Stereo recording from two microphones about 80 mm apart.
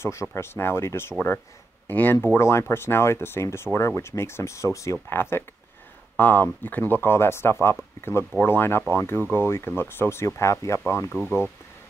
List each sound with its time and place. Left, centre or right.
0.0 s speech: left
2.2 s speech: left